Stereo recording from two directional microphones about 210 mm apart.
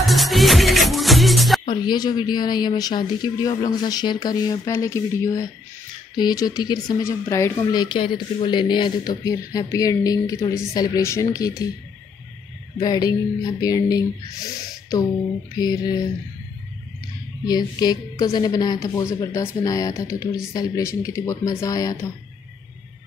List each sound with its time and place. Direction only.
0.0 s music: centre (ahead or behind)
1.7 s a woman's voice: 20° left (ahead or behind)
12.7 s a woman's voice: 20° left (ahead or behind)
17.5 s speech: 20° left (ahead or behind)